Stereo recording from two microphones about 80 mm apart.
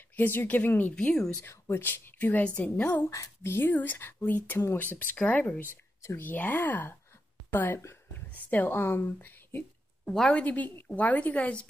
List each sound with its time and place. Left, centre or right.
0.1 s a woman's voice: left
0.9 s speech: centre
1.4 s a woman's voice: left
7.8 s a sound: left
8.3 s speech: left
10.0 s a woman's voice: centre
10.3 s a woman's voice: centre